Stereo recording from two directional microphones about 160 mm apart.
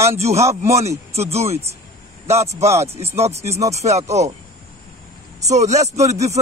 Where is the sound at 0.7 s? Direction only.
40° right (ahead or behind).